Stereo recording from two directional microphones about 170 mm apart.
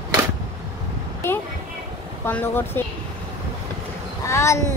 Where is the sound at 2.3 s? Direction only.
10° left (ahead or behind).